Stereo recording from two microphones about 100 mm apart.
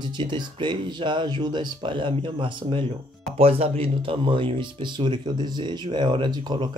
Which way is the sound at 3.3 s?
75° right (ahead or behind).